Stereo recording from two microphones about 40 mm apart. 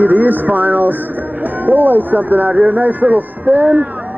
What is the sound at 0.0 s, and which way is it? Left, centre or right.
Speech, right.